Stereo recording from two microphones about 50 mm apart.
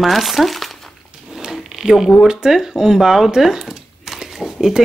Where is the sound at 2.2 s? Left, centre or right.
Centre.